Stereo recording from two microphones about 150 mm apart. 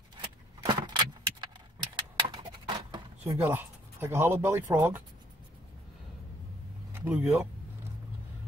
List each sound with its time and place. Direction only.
0.7 s keys jangling: 30° right (ahead or behind)
2.0 s a sound: 30° right (ahead or behind)
3.3 s speech: 15° right (ahead or behind)
6.9 s speech: 10° right (ahead or behind)